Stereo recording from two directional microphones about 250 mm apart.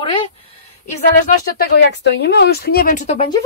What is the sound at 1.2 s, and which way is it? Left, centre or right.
Speech, left.